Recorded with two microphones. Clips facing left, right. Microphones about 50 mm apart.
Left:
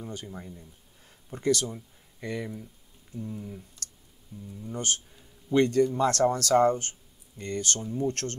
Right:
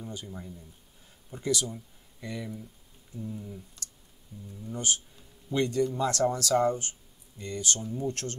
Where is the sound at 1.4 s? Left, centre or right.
Left.